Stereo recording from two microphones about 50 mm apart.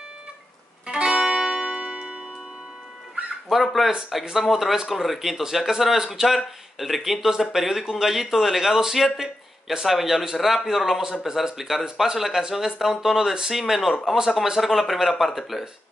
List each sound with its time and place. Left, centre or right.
0.8 s music: centre
3.4 s speech: centre